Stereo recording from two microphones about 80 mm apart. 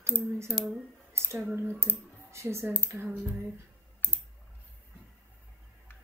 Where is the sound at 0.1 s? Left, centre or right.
Left.